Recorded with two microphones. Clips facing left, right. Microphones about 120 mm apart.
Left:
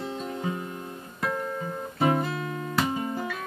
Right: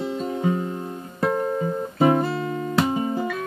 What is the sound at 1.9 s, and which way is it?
Guitar, 25° right (ahead or behind).